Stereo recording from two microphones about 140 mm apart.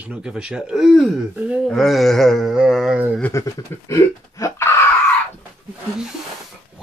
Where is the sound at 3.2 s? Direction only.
20° left (ahead or behind).